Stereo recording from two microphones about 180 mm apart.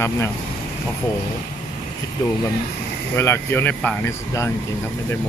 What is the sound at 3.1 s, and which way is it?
Speech, 15° left (ahead or behind).